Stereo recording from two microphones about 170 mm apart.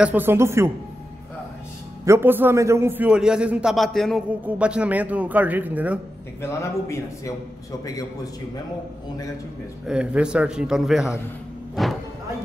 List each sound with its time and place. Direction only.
0.0 s a man's voice: 10° right (ahead or behind)
2.0 s a man's voice: 15° right (ahead or behind)
6.4 s a man's voice: 15° left (ahead or behind)
9.8 s a man's voice: 5° right (ahead or behind)
11.7 s music: centre (ahead or behind)